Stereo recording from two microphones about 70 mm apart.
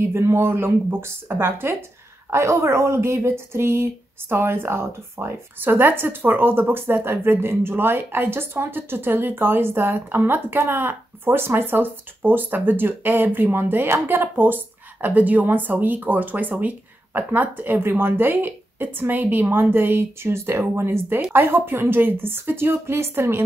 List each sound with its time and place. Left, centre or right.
0.1 s speech: right